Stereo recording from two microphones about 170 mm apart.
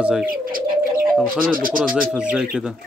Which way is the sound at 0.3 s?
55° right (ahead or behind).